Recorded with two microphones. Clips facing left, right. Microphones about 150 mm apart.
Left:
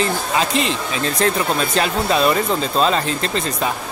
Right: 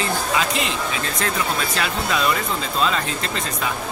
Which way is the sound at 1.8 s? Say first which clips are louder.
Left 7 dB; 30° left (ahead or behind).